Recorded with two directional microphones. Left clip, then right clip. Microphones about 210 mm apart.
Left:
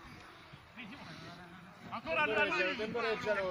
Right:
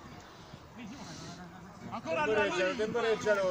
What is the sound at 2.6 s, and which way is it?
Speech, 40° right (ahead or behind).